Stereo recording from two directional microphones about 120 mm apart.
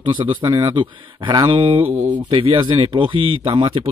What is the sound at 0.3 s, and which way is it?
Speech, 40° right (ahead or behind).